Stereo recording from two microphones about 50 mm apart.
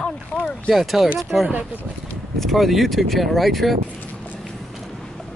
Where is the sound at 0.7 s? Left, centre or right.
Centre.